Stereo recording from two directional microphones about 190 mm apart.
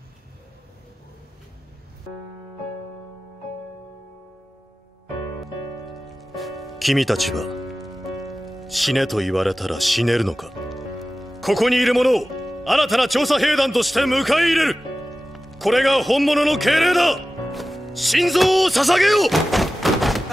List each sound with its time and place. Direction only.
5.4 s speech: centre (ahead or behind)